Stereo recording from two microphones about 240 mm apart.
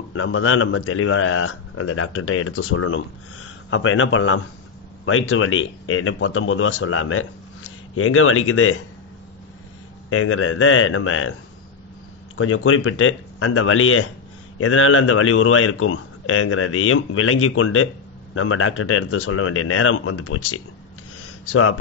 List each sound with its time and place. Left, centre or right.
0.1 s a man's voice: left
10.0 s a man's voice: left
12.4 s a man's voice: left